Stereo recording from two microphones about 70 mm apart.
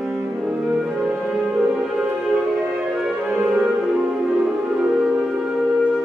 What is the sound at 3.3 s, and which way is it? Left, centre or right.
Music, centre.